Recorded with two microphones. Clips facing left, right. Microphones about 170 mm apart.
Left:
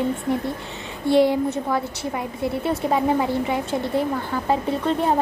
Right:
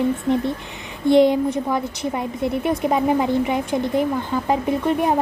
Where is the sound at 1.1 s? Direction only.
20° right (ahead or behind).